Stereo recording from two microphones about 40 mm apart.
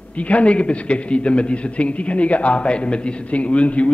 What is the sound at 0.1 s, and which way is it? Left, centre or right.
A man's voice, left.